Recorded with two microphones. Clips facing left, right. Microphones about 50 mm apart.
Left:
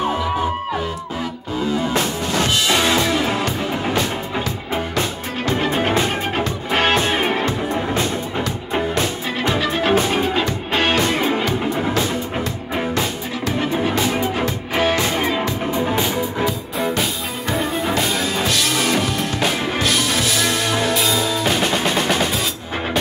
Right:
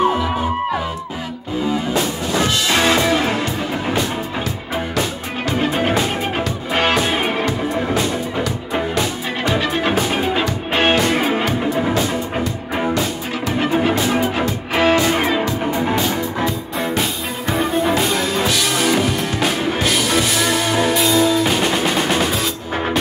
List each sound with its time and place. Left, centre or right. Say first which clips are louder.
3.0 s music: right 2 dB; centre
5.9 s music: right 1 dB; centre
9.6 s music: left 3 dB; centre
10.7 s music: right 3 dB; right
14.3 s music: right 2 dB; right
15.0 s music: right 3 dB; right
16.4 s music: even; centre